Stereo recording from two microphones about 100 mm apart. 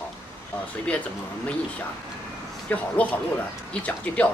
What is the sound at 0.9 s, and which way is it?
Speech, 15° left (ahead or behind).